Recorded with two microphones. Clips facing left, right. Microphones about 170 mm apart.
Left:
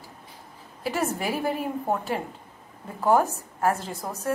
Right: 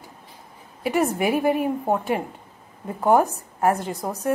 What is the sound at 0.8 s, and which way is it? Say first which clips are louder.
A woman's voice: right 6 dB; 15° right (ahead or behind).